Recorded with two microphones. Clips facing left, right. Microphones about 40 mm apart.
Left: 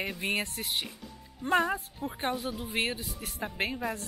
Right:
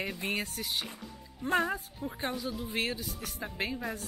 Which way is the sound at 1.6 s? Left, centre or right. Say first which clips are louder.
Left 2 dB; centre.